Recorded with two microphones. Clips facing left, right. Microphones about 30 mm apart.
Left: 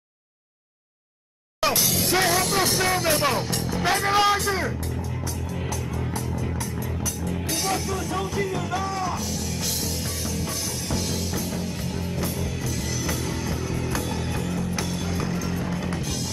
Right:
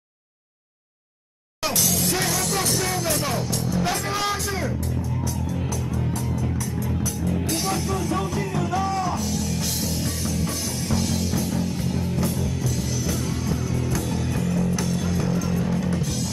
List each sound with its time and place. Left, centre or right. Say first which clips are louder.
2.0 s music: left 3 dB; left
3.0 s speech: left 3 dB; left
3.5 s music: even; left
3.9 s speech: left 5 dB; left
7.4 s music: left 2 dB; centre